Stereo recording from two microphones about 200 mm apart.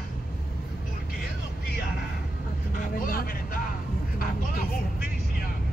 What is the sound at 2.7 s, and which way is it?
Vehicle, 45° left (ahead or behind).